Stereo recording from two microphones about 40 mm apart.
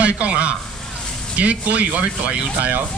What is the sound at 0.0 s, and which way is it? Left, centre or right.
Speech, right.